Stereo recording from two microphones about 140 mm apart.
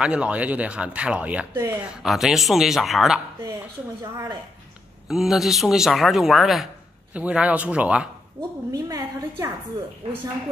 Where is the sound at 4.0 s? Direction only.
30° right (ahead or behind).